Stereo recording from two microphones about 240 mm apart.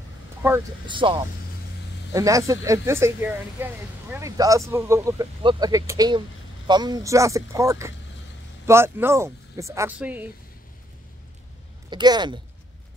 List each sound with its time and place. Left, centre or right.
0.4 s speech: centre
11.9 s speech: centre